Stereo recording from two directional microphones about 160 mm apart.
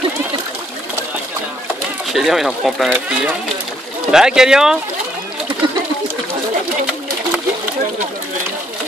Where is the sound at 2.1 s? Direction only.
Centre (ahead or behind).